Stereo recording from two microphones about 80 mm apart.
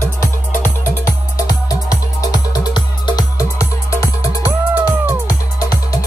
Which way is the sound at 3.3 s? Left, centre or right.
Left.